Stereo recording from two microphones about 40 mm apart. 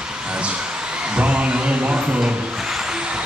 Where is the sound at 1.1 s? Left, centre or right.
Right.